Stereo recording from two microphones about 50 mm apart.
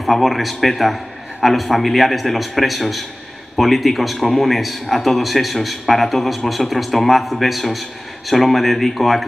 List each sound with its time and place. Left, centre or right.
0.0 s speech: centre